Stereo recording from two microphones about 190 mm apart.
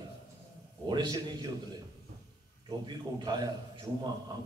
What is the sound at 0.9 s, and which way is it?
Speech, 25° right (ahead or behind).